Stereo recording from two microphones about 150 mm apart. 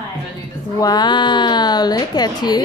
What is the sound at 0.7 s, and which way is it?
Speech, 25° left (ahead or behind).